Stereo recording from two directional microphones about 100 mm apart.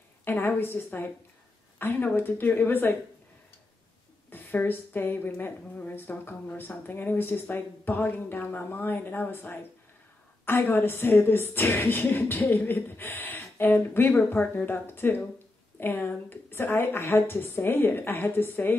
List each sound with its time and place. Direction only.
0.2 s a woman's voice: 20° left (ahead or behind)
4.3 s a woman's voice: 20° left (ahead or behind)